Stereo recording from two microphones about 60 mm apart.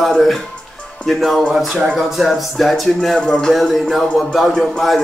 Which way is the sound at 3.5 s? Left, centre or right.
Centre.